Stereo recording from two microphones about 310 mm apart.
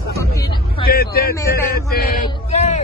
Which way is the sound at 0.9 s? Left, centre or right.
Left.